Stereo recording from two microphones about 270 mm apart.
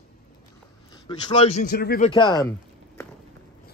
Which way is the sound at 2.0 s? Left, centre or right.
Centre.